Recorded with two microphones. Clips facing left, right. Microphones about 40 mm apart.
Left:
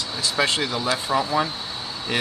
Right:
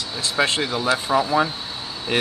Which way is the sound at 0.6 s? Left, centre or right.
Centre.